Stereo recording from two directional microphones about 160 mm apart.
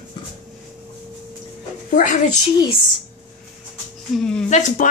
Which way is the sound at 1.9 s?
55° left (ahead or behind).